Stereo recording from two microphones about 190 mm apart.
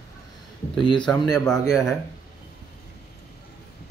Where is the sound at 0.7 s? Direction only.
25° left (ahead or behind).